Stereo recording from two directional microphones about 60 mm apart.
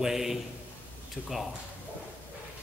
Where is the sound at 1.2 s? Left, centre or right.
Centre.